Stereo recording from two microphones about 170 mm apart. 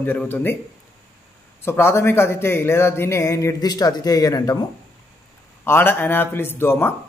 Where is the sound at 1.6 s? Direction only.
15° left (ahead or behind).